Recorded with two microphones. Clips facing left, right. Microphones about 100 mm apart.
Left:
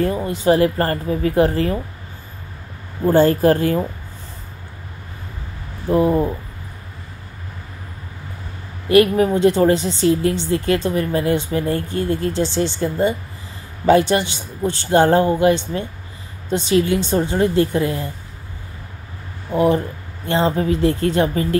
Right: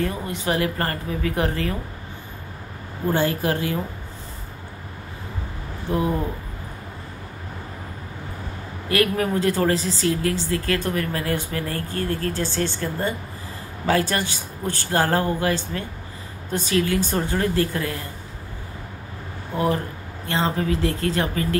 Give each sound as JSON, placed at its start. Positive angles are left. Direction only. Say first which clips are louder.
{"t": 0.0, "sound": "speech", "louder": "left 7 dB", "side_deg": 35}
{"t": 3.1, "sound": "speech", "louder": "left 8 dB", "side_deg": 45}
{"t": 5.9, "sound": "speech", "louder": "left 7 dB", "side_deg": 40}
{"t": 8.8, "sound": "speech", "louder": "left 8 dB", "side_deg": 25}
{"t": 20.2, "sound": "speech", "louder": "left 5 dB", "side_deg": 30}